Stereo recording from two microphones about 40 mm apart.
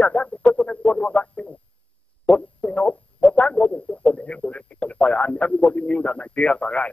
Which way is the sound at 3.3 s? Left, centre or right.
Left.